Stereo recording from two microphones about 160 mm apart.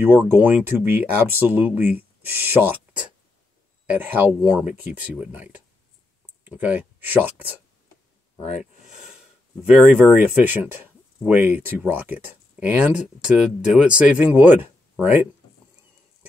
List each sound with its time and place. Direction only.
0.0 s speech: 10° right (ahead or behind)
8.8 s speech: 5° right (ahead or behind)